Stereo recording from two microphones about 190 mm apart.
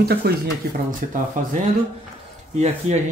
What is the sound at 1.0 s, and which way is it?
Speech, 45° right (ahead or behind).